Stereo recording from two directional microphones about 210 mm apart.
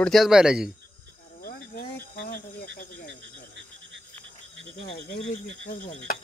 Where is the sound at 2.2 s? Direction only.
45° left (ahead or behind).